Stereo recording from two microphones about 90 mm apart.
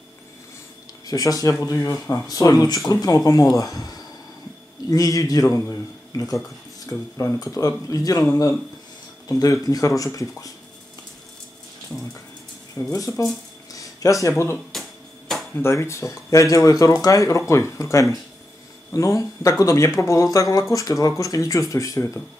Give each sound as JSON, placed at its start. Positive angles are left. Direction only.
{"t": 1.0, "sound": "speech", "side_deg": 40}
{"t": 9.3, "sound": "speech", "side_deg": 40}
{"t": 12.7, "sound": "speech", "side_deg": 35}
{"t": 14.7, "sound": "a sound", "side_deg": 0}
{"t": 15.5, "sound": "speech", "side_deg": 30}